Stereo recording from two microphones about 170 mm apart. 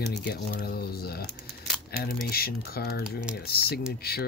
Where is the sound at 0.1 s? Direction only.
70° left (ahead or behind).